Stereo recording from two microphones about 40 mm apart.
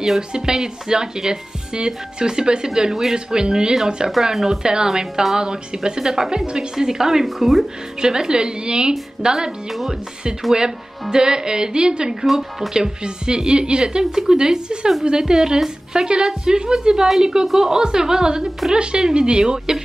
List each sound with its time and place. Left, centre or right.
0.3 s speech: centre
8.0 s speech: centre
10.5 s speech: centre